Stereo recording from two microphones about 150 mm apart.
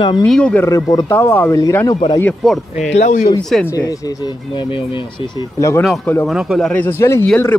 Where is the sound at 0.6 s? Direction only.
20° left (ahead or behind).